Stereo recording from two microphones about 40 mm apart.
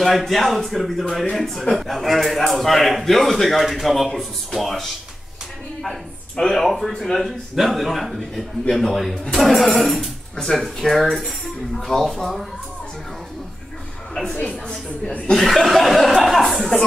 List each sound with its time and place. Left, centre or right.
0.1 s a man's voice: centre
6.4 s a man's voice: centre
9.2 s speech: centre
9.5 s a man's voice: centre
14.2 s a woman's voice: left
15.3 s a man's voice: centre